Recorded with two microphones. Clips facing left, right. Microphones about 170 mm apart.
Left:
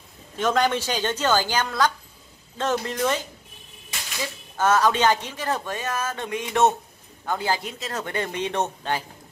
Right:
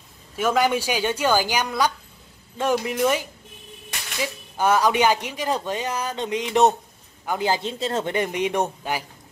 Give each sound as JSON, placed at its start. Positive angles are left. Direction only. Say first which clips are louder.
{"t": 0.4, "sound": "speech", "louder": "right 1 dB", "side_deg": -10}